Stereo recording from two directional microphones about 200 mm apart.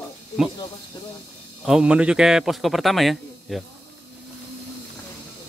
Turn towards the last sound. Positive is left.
turn(degrees=0)  # may be behind; listen again after turning